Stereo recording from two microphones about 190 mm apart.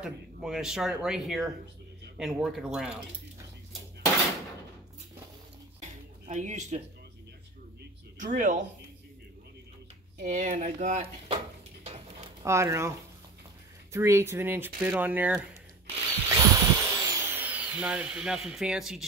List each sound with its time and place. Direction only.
0.0 s speech: 5° right (ahead or behind)
5.8 s a sound: 40° right (ahead or behind)
8.2 s speech: 40° right (ahead or behind)
10.2 s speech: 40° right (ahead or behind)
12.4 s speech: 15° right (ahead or behind)
13.9 s speech: 15° right (ahead or behind)
16.3 s drill: 20° right (ahead or behind); by 19.0 s 5° right (ahead or behind)